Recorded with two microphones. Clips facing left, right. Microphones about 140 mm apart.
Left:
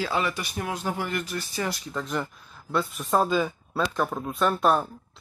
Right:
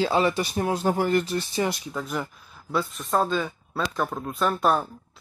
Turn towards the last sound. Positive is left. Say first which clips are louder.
# even
turn(degrees=0)  # may be behind; listen again after turning